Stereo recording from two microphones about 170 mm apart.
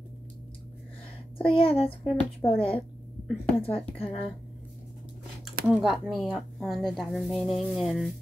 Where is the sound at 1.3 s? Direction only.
35° left (ahead or behind).